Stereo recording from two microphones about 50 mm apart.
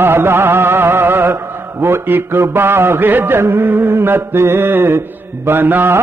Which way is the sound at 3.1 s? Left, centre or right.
Right.